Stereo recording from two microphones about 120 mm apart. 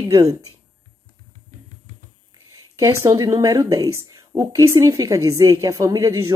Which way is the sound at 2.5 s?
25° right (ahead or behind).